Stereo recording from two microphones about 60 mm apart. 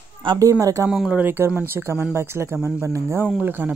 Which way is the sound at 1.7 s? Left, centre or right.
Right.